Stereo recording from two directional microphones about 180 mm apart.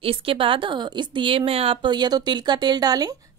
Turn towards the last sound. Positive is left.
turn(degrees=-20)  # may be behind; listen again after turning